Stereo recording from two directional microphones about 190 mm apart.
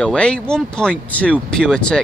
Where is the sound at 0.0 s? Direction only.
5° left (ahead or behind).